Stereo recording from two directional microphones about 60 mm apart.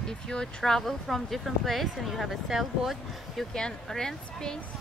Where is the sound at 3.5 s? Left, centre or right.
Centre.